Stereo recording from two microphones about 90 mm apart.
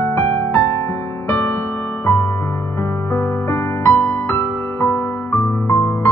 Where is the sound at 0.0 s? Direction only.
25° left (ahead or behind).